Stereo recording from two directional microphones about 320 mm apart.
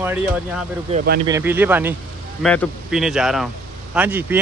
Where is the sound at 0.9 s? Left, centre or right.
Right.